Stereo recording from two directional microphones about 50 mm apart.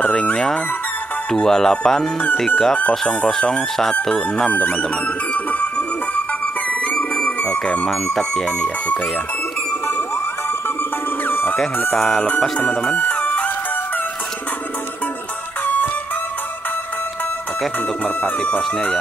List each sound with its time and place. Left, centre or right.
0.0 s speech: left
4.5 s music: left
7.9 s speech: centre
11.2 s music: left
12.2 s music: left
15.6 s music: left
18.0 s music: left